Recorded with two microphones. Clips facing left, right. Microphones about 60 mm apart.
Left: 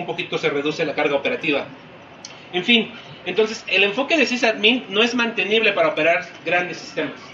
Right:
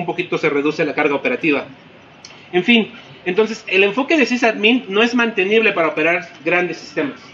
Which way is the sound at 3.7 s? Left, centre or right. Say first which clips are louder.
Right 5 dB; right.